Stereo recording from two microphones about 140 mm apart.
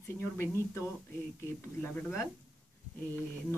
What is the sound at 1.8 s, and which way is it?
Speech, 15° left (ahead or behind).